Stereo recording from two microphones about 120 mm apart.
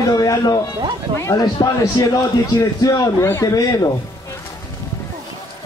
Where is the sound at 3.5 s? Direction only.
30° left (ahead or behind).